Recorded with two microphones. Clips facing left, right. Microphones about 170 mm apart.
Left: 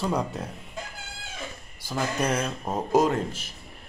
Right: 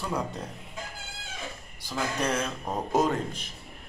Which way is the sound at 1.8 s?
5° left (ahead or behind).